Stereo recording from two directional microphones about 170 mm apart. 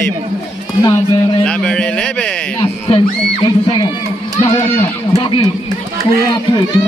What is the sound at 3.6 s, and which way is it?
Speech, 25° left (ahead or behind).